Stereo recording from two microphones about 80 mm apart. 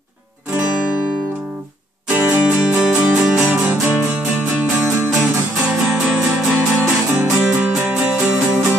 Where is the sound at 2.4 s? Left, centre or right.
Centre.